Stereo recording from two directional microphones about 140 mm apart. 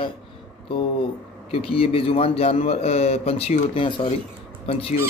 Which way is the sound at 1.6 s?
40° left (ahead or behind).